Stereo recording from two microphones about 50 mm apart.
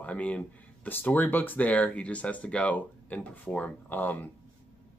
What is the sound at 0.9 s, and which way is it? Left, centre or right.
Speech, left.